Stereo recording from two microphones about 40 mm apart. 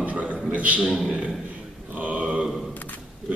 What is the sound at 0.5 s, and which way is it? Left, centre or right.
Speech, right.